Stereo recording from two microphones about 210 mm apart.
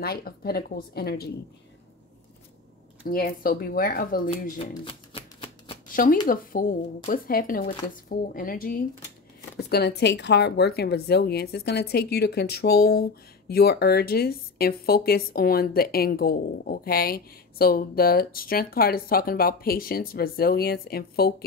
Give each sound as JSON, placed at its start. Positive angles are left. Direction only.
{"t": 0.0, "sound": "speech", "side_deg": 45}
{"t": 3.1, "sound": "speech", "side_deg": 45}
{"t": 4.8, "sound": "a sound", "side_deg": 25}
{"t": 6.2, "sound": "speech", "side_deg": 40}